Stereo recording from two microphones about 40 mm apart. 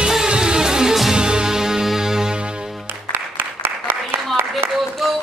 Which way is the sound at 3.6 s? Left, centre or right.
Right.